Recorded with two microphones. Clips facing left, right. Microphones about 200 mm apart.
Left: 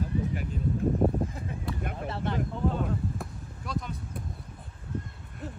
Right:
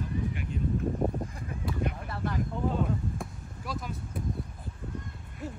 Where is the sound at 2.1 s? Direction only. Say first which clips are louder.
Left 2 dB; 25° left (ahead or behind).